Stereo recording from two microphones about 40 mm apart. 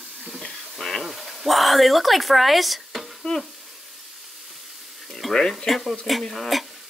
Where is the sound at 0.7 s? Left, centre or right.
Centre.